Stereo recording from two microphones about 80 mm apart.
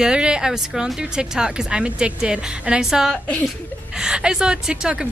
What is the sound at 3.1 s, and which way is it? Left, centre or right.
Speech, centre.